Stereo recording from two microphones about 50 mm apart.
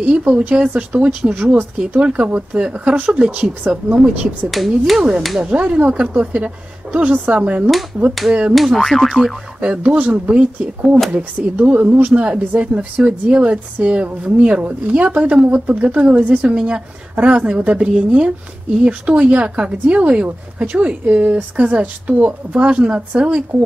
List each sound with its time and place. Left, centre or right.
0.0 s speech: right
1.3 s speech: right
1.8 s speech: right
4.1 s speech: right
4.5 s speech: centre
5.4 s speech: right
8.7 s boing: centre
9.6 s speech: right
16.5 s speech: centre